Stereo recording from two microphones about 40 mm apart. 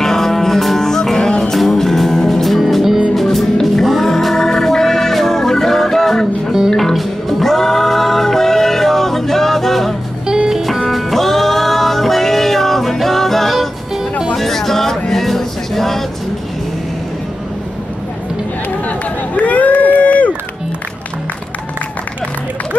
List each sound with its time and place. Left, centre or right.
0.0 s music: centre
10.2 s music: centre
10.9 s music: centre
18.9 s run: left